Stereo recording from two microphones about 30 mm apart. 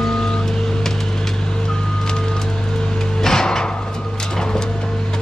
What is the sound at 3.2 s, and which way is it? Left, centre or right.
Music, centre.